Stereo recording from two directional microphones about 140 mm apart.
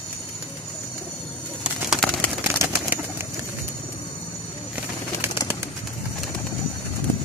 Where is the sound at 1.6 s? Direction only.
Centre (ahead or behind).